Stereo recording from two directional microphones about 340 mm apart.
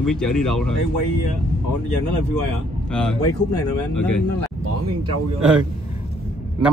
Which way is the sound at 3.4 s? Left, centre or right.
Left.